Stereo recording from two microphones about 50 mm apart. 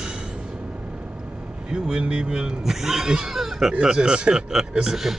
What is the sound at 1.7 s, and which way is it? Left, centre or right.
Speech, right.